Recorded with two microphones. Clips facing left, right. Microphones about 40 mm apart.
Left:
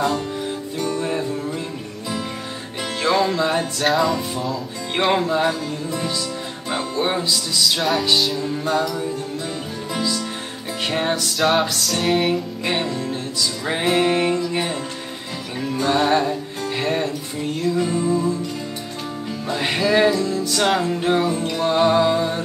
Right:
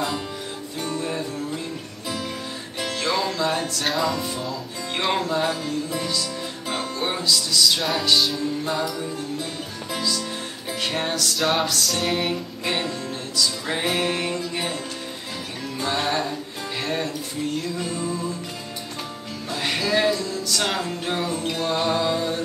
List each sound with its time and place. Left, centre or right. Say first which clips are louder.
3.0 s music: left 6 dB; centre
3.8 s music: left 6 dB; centre
4.9 s music: left 5 dB; left
8.2 s music: left 2 dB; centre
9.9 s music: left 2 dB; centre
11.3 s music: left 4 dB; centre
12.6 s music: left 1 dB; centre
15.8 s music: left 6 dB; centre
17.6 s music: left 7 dB; centre
19.5 s music: left 4 dB; centre